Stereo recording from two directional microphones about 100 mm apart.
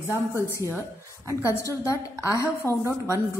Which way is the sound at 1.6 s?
30° left (ahead or behind).